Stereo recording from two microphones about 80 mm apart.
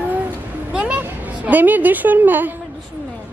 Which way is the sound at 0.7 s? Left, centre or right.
Centre.